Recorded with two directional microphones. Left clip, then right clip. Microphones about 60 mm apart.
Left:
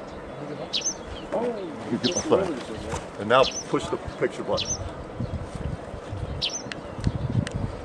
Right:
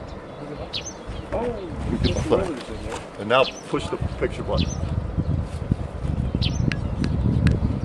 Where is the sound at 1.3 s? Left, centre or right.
Right.